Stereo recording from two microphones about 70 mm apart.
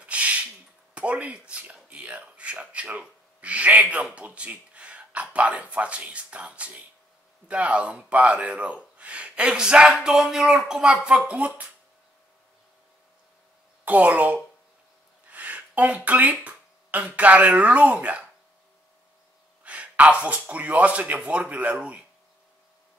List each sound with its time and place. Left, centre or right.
0.0 s a sound: centre
0.9 s speech: centre
13.8 s speech: right
19.6 s speech: centre